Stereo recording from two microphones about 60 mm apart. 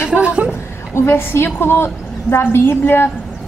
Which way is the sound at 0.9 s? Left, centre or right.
Left.